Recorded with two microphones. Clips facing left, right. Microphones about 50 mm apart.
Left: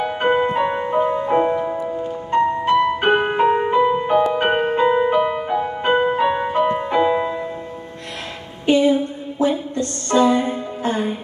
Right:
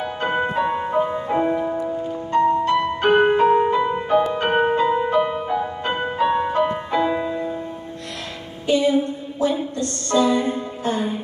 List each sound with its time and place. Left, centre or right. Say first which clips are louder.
0.2 s music: left 3 dB; left; by 1.9 s centre
2.3 s music: left 1 dB; left
8.7 s music: left 2 dB; left